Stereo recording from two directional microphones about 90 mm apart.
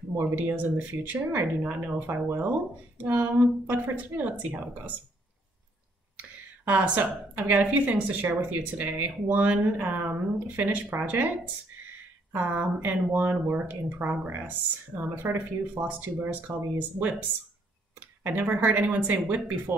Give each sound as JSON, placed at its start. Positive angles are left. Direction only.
{"t": 0.1, "sound": "a woman's voice", "side_deg": -25}
{"t": 6.6, "sound": "a woman's voice", "side_deg": -15}
{"t": 18.2, "sound": "a woman's voice", "side_deg": -20}